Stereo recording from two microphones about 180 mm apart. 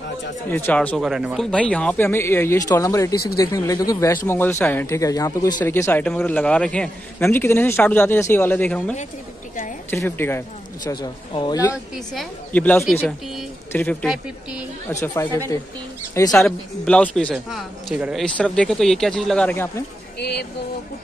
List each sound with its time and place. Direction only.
0.5 s a man's voice: 10° left (ahead or behind)
10.9 s a man's voice: 25° left (ahead or behind)
11.7 s a man's voice: centre (ahead or behind)
14.0 s a man's voice: 5° right (ahead or behind)
14.9 s speech: 15° left (ahead or behind)
16.4 s a man's voice: 5° left (ahead or behind)
20.2 s speech: 65° left (ahead or behind)